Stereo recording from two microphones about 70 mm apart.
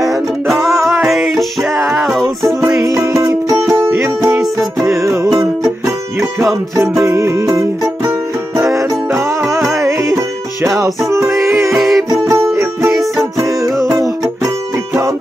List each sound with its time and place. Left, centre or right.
0.5 s music: centre
2.4 s music: right
4.4 s music: centre
4.8 s music: right
11.7 s music: centre
12.1 s music: right